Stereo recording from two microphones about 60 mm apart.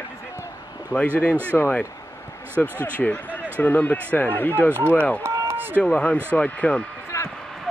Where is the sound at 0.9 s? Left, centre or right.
Left.